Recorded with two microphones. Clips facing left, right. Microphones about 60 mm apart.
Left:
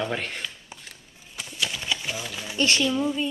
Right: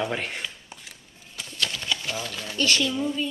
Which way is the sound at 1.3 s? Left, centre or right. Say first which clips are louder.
Even; centre.